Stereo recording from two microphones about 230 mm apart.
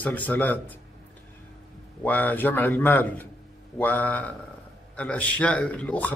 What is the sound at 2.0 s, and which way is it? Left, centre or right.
A man's voice, centre.